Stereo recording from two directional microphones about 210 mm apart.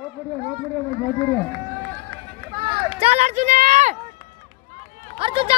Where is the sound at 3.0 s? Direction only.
30° right (ahead or behind).